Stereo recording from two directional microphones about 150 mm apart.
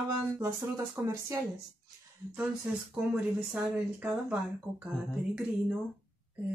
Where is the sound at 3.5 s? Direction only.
10° right (ahead or behind).